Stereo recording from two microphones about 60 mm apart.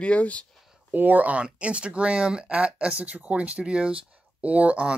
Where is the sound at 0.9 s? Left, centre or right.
Right.